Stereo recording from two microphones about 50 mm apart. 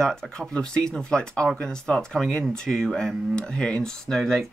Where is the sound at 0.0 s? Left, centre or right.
Centre.